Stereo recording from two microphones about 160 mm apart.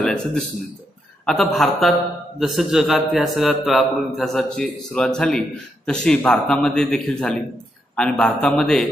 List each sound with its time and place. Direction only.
0.0 s a man's voice: 5° left (ahead or behind)